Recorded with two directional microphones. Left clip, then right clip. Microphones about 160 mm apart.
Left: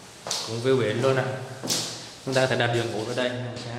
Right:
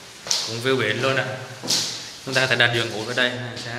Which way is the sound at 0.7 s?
20° left (ahead or behind).